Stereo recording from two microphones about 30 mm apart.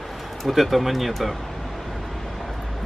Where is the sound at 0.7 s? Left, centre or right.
Centre.